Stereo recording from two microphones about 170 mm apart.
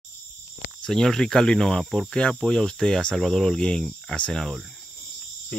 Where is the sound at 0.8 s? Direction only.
5° left (ahead or behind).